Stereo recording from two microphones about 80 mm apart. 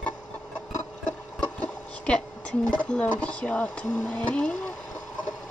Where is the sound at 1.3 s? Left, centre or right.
Centre.